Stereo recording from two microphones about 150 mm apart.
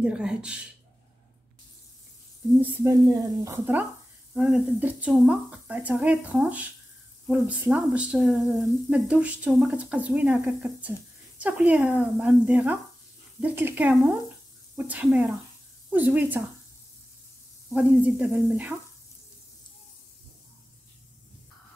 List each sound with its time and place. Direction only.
0.0 s speech: 5° right (ahead or behind)
2.5 s speech: 15° right (ahead or behind)
4.3 s speech: 5° right (ahead or behind)
17.7 s speech: 5° right (ahead or behind)